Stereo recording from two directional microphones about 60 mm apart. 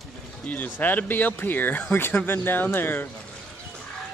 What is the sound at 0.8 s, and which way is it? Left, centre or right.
Speech, left.